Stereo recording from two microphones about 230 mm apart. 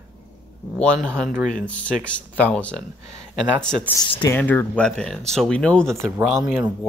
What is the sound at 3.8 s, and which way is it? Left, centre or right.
Speech, centre.